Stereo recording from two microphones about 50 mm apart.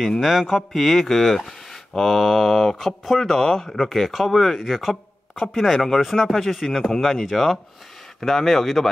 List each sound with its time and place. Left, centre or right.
0.0 s speech: centre